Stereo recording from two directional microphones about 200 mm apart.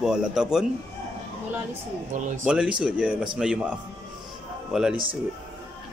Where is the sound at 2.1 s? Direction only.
40° right (ahead or behind).